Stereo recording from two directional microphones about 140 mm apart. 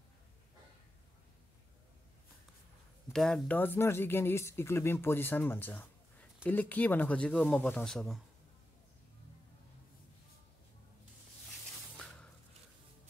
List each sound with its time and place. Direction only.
3.1 s speech: 5° left (ahead or behind)